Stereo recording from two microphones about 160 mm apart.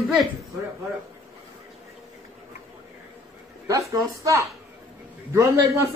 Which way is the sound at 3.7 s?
20° right (ahead or behind).